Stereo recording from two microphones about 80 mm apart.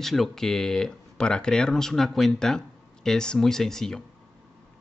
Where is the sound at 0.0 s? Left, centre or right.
Centre.